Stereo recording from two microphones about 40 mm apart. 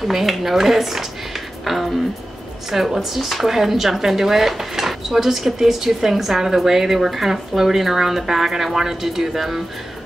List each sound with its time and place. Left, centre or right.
0.1 s a woman's voice: centre